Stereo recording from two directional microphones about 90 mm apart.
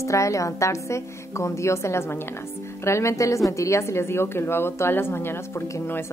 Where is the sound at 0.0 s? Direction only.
35° left (ahead or behind).